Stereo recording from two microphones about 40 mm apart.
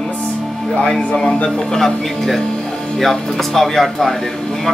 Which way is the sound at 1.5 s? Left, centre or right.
Centre.